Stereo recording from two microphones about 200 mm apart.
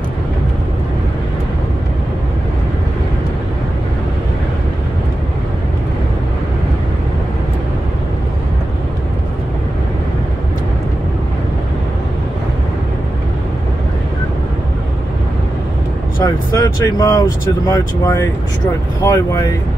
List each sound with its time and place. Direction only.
16.2 s speech: 20° left (ahead or behind)